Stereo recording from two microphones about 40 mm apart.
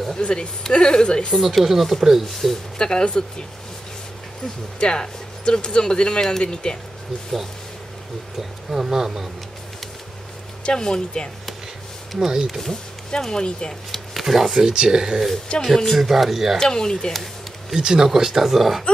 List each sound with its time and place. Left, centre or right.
0.2 s speech: left
1.4 s speech: centre
2.8 s speech: left
4.7 s speech: left
8.4 s speech: centre
10.6 s speech: centre
12.3 s speech: centre
13.2 s speech: centre
13.9 s speech: centre
15.6 s speech: centre
16.0 s speech: centre
16.5 s speech: centre
17.1 s a sound: centre
17.7 s speech: centre